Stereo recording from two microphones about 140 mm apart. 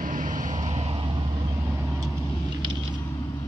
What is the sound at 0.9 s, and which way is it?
Vehicle, 35° right (ahead or behind).